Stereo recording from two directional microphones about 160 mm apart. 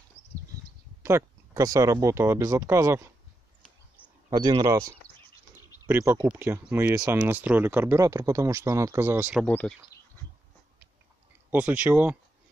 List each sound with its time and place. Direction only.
1.0 s speech: 20° right (ahead or behind)
4.3 s speech: 25° right (ahead or behind)
5.6 s bird: 20° left (ahead or behind)
5.9 s speech: 15° right (ahead or behind)
9.5 s speech: 10° left (ahead or behind)
11.5 s speech: 10° right (ahead or behind)